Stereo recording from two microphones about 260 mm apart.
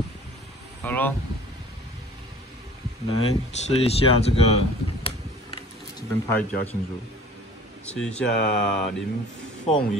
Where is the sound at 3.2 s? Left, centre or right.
Left.